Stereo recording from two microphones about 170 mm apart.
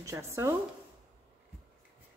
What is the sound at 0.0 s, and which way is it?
Speech, 15° right (ahead or behind).